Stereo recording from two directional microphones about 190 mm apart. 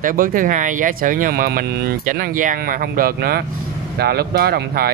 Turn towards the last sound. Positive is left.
turn(degrees=-55)  # may be behind; listen again after turning